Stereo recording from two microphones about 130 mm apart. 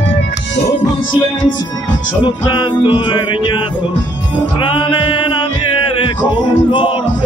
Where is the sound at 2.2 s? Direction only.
35° left (ahead or behind).